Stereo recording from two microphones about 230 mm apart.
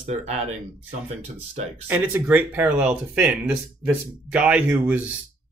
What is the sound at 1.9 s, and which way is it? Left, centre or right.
Speech, centre.